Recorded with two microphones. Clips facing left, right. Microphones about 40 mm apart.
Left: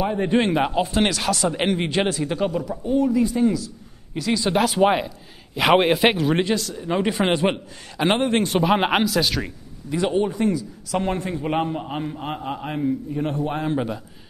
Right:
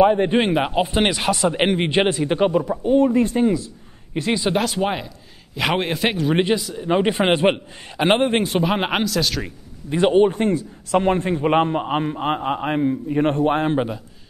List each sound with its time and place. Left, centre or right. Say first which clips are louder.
0.0 s a man's voice: right 5 dB; right
0.5 s a man's voice: right 1 dB; centre; by 3.4 s right
3.4 s speech: right 1 dB; right
4.6 s a man's voice: left 3 dB; centre
6.3 s speech: right 2 dB; right
8.4 s speech: left 1 dB; centre
9.8 s a man's voice: right 6 dB; right
11.0 s a man's voice: right 6 dB; right